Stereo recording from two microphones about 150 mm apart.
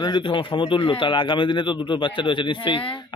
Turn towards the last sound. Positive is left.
turn(degrees=35)  # may be behind; listen again after turning